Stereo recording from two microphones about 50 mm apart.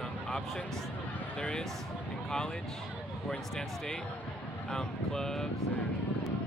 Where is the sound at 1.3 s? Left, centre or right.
Centre.